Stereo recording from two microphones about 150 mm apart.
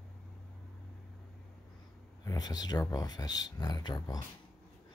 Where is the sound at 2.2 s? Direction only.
25° left (ahead or behind).